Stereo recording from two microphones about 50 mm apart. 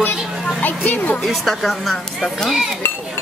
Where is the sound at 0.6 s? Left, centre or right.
Left.